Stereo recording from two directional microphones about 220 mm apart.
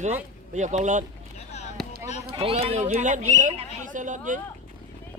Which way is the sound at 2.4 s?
25° right (ahead or behind).